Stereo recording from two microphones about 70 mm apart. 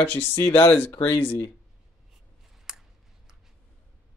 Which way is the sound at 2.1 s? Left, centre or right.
Centre.